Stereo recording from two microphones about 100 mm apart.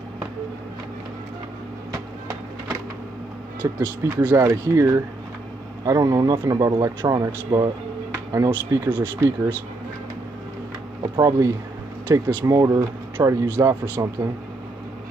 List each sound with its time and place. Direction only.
3.8 s speech: 20° right (ahead or behind)
4.4 s speech: 30° right (ahead or behind)
11.1 s speech: 35° right (ahead or behind)
12.1 s speech: 20° right (ahead or behind)
12.4 s speech: 30° right (ahead or behind)